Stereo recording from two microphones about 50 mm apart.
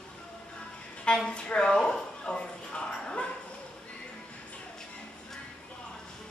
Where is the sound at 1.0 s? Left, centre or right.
Centre.